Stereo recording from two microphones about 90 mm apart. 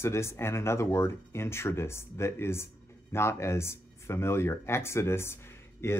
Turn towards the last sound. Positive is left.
turn(degrees=25)  # may be behind; listen again after turning